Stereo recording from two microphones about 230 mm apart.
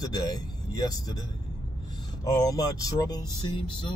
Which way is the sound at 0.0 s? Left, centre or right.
Centre.